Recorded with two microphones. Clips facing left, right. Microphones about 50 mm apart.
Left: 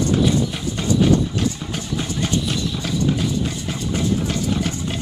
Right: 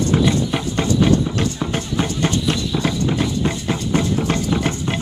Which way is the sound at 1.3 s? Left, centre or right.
Right.